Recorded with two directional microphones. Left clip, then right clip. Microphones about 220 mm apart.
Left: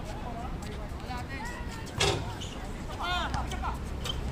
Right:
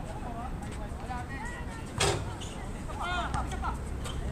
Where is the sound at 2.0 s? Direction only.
10° right (ahead or behind).